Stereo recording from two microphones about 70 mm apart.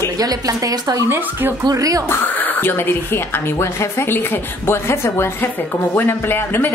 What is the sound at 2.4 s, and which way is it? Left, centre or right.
A woman's voice, left.